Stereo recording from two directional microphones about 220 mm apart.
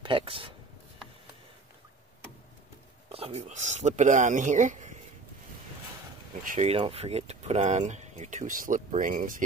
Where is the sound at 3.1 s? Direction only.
30° right (ahead or behind).